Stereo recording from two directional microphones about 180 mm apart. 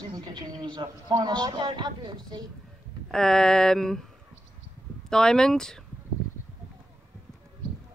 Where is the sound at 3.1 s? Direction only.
5° left (ahead or behind).